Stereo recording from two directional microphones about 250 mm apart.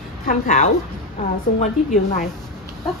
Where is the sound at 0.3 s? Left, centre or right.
Left.